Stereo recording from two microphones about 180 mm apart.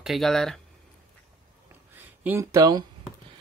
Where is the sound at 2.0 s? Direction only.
10° right (ahead or behind).